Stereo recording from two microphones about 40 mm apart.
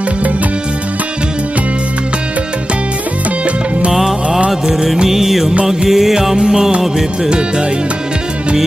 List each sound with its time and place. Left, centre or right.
3.9 s music: centre
7.2 s speech: centre